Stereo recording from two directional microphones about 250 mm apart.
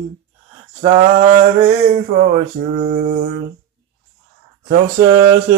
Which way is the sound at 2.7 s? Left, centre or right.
Right.